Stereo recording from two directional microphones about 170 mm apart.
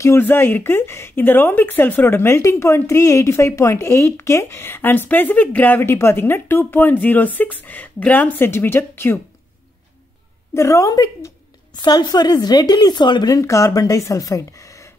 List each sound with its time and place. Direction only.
0.0 s speech: 15° left (ahead or behind)
10.5 s a woman's voice: 15° left (ahead or behind)